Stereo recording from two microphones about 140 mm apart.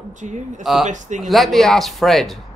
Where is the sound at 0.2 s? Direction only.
60° right (ahead or behind).